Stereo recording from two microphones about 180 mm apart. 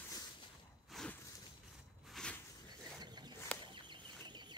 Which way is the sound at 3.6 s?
25° right (ahead or behind).